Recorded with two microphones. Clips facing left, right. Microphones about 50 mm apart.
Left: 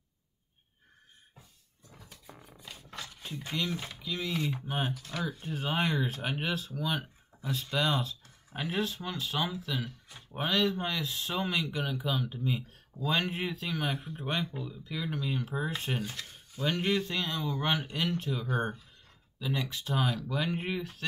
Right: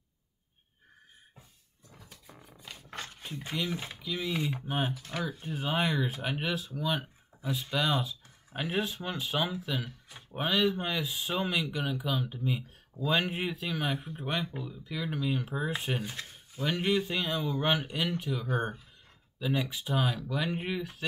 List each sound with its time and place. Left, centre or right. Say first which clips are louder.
2.7 s dog: right 2 dB; right
3.3 s speech: even; centre
5.3 s speech: right 1 dB; centre